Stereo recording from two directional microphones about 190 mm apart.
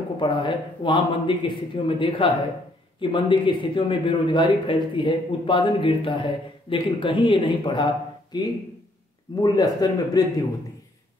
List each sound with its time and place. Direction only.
0.2 s a man's voice: 25° left (ahead or behind)